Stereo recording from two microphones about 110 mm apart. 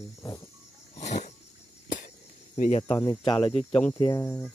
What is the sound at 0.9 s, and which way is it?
Wild animals, 90° left.